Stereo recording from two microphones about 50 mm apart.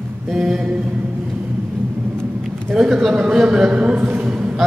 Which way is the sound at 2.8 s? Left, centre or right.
Centre.